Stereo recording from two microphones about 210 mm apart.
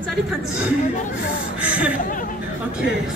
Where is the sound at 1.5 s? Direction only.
5° right (ahead or behind).